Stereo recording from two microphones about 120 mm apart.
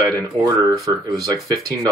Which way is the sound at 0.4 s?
30° right (ahead or behind).